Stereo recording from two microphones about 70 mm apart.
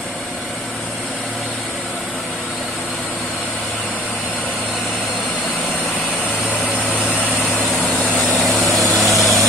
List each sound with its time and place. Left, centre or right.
6.9 s vehicle: left
8.7 s vehicle: centre